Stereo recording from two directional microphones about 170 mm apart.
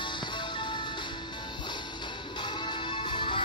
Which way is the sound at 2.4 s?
25° left (ahead or behind).